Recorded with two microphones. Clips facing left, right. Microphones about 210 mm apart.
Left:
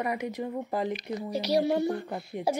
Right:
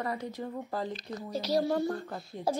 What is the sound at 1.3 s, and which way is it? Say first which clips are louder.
Speech: left 3 dB; 70° left (ahead or behind).